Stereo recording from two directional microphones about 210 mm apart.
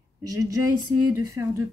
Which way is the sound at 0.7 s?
90° right.